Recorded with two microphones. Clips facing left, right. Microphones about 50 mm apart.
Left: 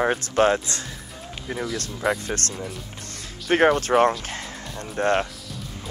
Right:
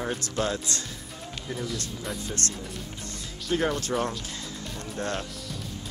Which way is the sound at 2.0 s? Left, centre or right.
Left.